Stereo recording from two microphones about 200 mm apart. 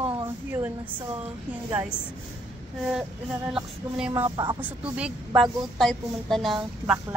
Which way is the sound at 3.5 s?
5° right (ahead or behind).